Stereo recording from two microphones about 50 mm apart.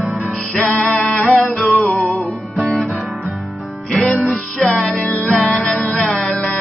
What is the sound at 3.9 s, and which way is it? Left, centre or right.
Music, centre.